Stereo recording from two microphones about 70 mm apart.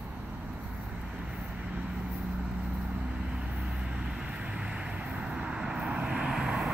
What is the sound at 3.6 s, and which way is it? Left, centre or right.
Vehicle, centre.